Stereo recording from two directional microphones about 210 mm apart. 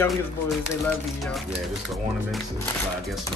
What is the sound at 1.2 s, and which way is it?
Speech, centre (ahead or behind).